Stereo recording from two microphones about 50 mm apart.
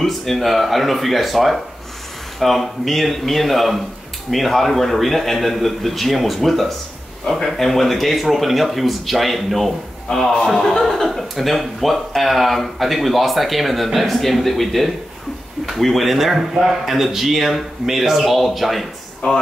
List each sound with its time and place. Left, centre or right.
0.0 s a man's voice: centre
19.2 s speech: left